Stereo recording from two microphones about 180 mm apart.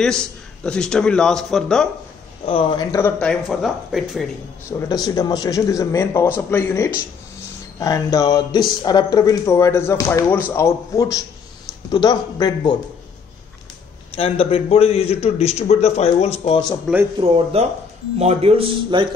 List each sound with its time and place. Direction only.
0.0 s a man's voice: 5° left (ahead or behind)
2.4 s a man's voice: 30° left (ahead or behind); by 4.3 s centre (ahead or behind)
4.7 s a man's voice: 20° left (ahead or behind)
14.1 s a man's voice: 30° left (ahead or behind)
16.8 s speech: 10° right (ahead or behind)
17.2 s a man's voice: 35° right (ahead or behind)